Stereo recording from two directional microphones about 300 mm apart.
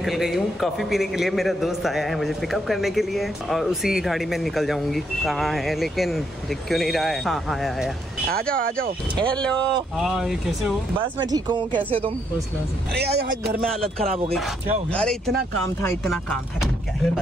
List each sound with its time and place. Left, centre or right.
0.0 s a man's voice: centre
8.5 s speech: right
9.2 s a man's voice: centre
11.0 s speech: centre
12.9 s speech: right
13.4 s a man's voice: centre
14.0 s speech: centre
14.3 s a man's voice: centre